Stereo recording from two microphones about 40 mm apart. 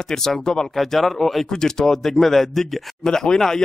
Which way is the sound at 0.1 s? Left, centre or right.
Centre.